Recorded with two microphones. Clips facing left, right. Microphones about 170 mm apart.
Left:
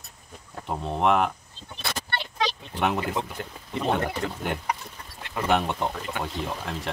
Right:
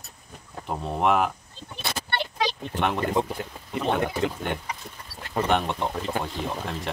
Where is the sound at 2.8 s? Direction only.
5° left (ahead or behind).